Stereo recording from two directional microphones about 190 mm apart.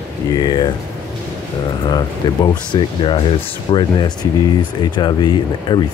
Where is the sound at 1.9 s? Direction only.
25° left (ahead or behind).